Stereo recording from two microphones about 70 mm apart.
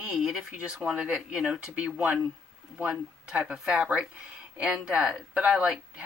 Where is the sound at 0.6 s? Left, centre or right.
Centre.